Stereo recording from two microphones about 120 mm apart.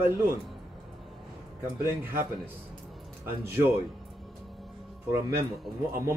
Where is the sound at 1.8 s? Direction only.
20° right (ahead or behind).